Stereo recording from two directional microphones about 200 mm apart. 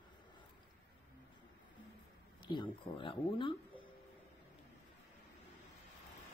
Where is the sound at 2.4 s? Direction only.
25° left (ahead or behind).